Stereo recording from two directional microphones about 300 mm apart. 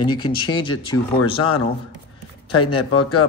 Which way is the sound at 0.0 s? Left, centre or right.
Centre.